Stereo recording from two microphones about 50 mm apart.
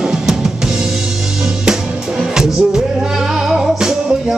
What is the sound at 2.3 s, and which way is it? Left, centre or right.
Music, centre.